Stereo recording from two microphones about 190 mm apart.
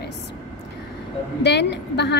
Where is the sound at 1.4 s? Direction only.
65° left (ahead or behind).